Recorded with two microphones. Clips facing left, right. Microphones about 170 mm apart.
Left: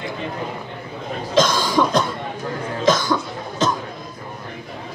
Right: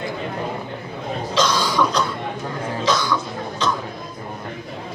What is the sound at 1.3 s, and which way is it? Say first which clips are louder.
Cough: left 4 dB; 45° left (ahead or behind).